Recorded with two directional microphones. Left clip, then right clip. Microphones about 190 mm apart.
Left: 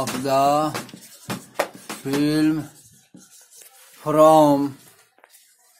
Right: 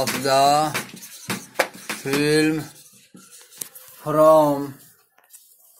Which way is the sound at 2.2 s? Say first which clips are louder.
Right 2 dB; 10° left (ahead or behind).